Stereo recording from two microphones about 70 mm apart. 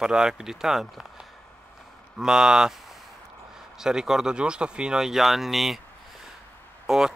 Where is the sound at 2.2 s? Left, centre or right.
Centre.